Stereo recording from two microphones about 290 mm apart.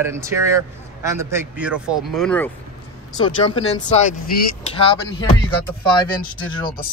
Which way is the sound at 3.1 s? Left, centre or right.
Centre.